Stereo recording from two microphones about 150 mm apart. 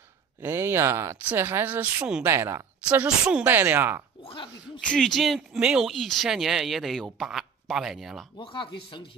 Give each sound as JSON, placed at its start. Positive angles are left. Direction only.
{"t": 0.4, "sound": "speech", "side_deg": -15}
{"t": 2.2, "sound": "speech", "side_deg": -20}
{"t": 4.2, "sound": "speech", "side_deg": 35}
{"t": 4.9, "sound": "speech", "side_deg": 0}
{"t": 8.4, "sound": "speech", "side_deg": 35}